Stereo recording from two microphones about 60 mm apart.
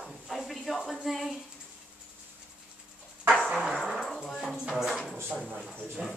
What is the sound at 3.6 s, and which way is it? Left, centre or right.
Music, centre.